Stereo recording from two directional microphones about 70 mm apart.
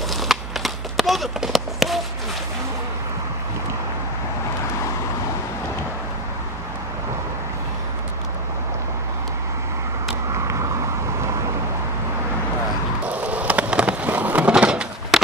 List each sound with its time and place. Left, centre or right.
0.1 s run: centre
10.3 s vehicle: right
13.0 s a sound: centre